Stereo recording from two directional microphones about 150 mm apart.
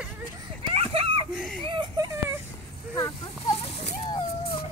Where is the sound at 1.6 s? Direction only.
30° right (ahead or behind).